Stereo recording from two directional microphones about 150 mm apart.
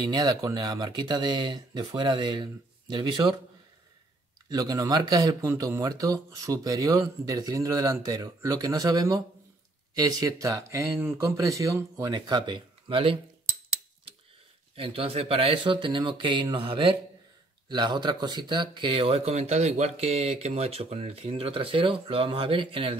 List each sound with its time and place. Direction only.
0.0 s speech: 25° right (ahead or behind)
4.5 s speech: 25° right (ahead or behind)
14.8 s speech: 40° right (ahead or behind)